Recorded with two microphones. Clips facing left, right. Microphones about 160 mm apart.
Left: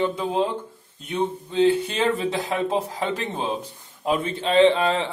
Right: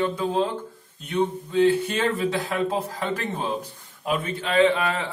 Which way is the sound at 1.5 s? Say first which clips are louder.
Even; 20° left (ahead or behind).